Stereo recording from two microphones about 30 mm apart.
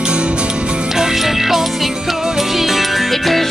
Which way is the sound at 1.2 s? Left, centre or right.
Centre.